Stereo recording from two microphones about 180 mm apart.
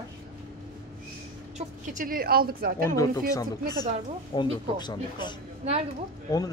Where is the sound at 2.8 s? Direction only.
20° left (ahead or behind).